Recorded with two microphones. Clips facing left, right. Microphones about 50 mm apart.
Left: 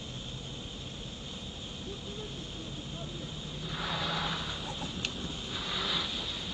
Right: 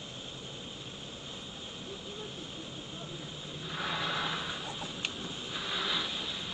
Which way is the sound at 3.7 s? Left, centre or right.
Centre.